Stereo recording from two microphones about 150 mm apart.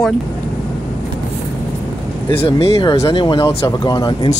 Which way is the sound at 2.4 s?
40° left (ahead or behind).